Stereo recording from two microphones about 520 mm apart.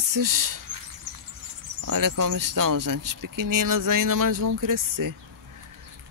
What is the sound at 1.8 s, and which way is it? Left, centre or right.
Speech, right.